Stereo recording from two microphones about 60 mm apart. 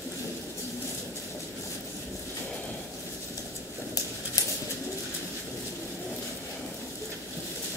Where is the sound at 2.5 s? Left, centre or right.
Left.